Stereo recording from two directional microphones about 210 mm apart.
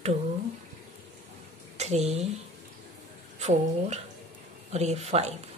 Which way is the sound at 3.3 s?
35° right (ahead or behind).